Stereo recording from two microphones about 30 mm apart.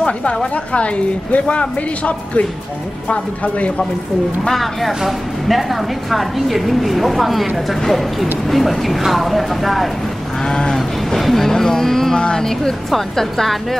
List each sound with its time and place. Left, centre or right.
0.0 s a woman's voice: left
4.5 s speech: centre
10.4 s sheep: left
11.1 s speech: centre
12.2 s sheep: left
13.1 s speech: centre